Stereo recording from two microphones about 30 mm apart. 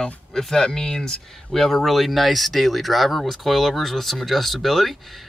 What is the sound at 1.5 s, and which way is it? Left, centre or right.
Speech, centre.